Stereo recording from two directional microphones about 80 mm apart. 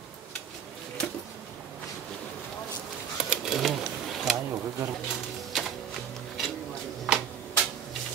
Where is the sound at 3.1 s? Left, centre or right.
Centre.